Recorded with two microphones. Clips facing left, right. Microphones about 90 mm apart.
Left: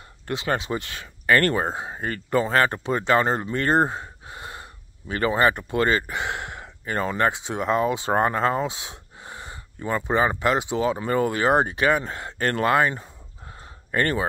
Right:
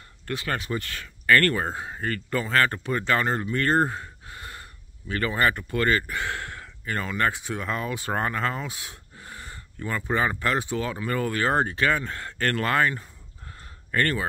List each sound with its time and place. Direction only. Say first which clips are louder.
0.3 s speech: left 3 dB; 20° left (ahead or behind)